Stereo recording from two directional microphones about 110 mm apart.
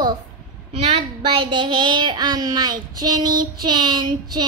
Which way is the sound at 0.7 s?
65° right (ahead or behind).